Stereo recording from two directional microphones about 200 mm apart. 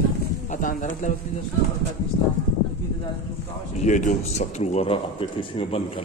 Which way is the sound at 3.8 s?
40° left (ahead or behind).